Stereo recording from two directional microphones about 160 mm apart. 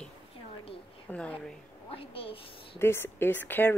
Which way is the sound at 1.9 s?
35° left (ahead or behind).